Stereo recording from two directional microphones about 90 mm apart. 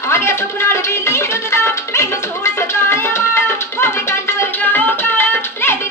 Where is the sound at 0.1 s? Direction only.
30° left (ahead or behind).